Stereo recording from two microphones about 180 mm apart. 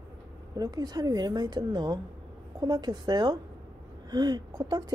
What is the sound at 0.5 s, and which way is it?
A woman's voice, 20° right (ahead or behind).